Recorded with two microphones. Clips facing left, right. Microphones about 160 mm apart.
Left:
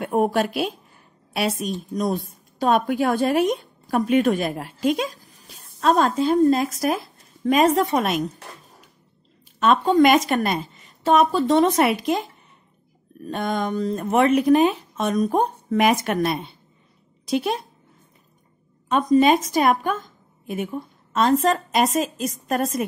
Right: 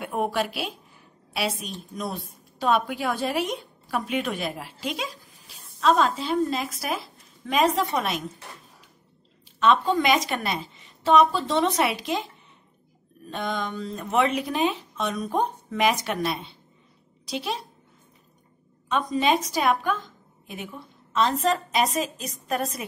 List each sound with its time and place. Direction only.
0.0 s a woman's voice: 40° left (ahead or behind)
9.6 s a woman's voice: 45° left (ahead or behind)
13.3 s a woman's voice: 50° left (ahead or behind)
18.9 s a woman's voice: 45° left (ahead or behind)